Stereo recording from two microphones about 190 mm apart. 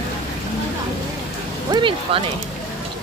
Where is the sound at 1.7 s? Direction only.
25° right (ahead or behind).